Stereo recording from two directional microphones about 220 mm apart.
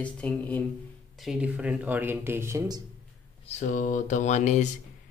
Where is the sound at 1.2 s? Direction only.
5° right (ahead or behind).